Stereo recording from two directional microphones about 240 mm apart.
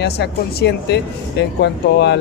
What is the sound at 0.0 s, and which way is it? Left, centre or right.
Speech, left.